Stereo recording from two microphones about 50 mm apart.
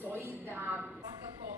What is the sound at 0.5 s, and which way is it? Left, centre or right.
Speech, right.